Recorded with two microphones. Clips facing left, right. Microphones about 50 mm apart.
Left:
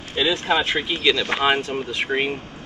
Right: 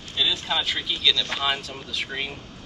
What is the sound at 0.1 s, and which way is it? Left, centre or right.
Speech, left.